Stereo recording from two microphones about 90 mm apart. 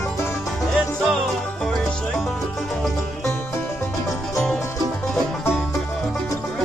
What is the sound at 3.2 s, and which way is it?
Music, 30° left (ahead or behind).